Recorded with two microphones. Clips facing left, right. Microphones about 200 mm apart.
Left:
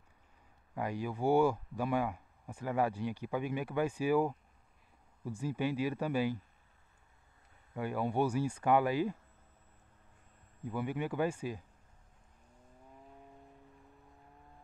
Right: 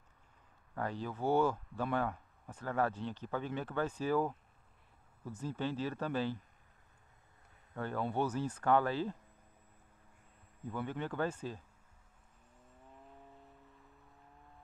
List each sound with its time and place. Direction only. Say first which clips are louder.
0.7 s speech: left 2 dB; 10° left (ahead or behind)
7.7 s speech: left 3 dB; 10° left (ahead or behind)
10.6 s speech: left 3 dB; 10° left (ahead or behind)